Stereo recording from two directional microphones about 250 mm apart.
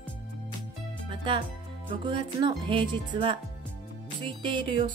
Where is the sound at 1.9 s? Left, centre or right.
Centre.